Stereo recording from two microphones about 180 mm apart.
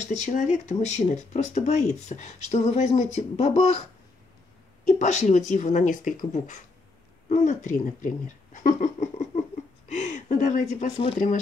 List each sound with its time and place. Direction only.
0.0 s speech: 40° left (ahead or behind)
4.8 s speech: 40° left (ahead or behind)
8.5 s a sound: 40° left (ahead or behind)
9.8 s speech: 40° left (ahead or behind)